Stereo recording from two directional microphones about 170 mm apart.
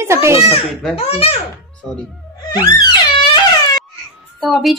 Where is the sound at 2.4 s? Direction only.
25° left (ahead or behind).